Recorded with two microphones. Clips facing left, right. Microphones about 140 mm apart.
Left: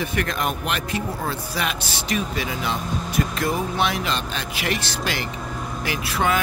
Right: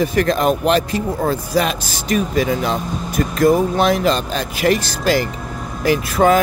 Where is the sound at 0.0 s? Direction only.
35° right (ahead or behind).